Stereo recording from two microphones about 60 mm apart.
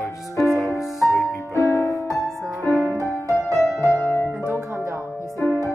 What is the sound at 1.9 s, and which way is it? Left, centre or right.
Music, right.